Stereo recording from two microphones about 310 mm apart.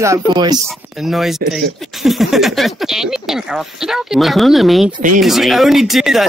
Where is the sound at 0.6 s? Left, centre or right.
Centre.